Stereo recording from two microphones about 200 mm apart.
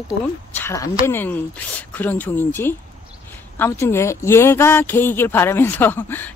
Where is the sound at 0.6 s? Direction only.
15° left (ahead or behind).